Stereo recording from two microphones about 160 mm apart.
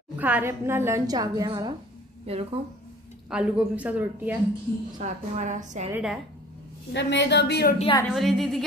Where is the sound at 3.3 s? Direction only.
10° right (ahead or behind).